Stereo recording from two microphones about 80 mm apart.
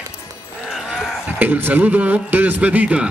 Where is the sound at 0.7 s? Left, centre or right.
Centre.